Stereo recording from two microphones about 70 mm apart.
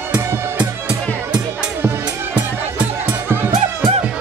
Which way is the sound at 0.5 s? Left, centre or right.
Centre.